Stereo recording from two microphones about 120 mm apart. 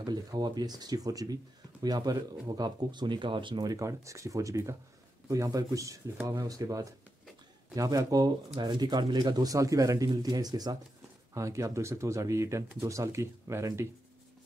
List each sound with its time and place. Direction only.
0.0 s speech: 35° right (ahead or behind)